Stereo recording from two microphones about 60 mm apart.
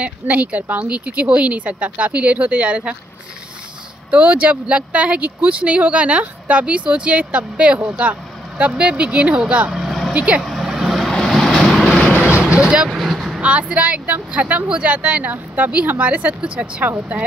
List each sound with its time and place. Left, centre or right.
0.0 s speech: right
4.1 s speech: right
9.7 s vehicle: centre
10.1 s speech: right
10.4 s vehicle: centre
11.1 s vehicle: centre
12.3 s vehicle: centre
13.4 s speech: right
16.8 s speech: right